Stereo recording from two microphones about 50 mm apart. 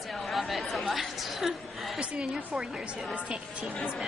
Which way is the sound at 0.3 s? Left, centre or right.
Centre.